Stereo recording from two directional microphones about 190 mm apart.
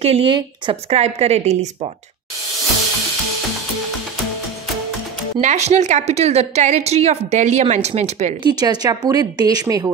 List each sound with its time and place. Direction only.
0.0 s a woman's voice: 30° right (ahead or behind)
5.4 s a woman's voice: 35° right (ahead or behind)
8.5 s speech: 20° right (ahead or behind)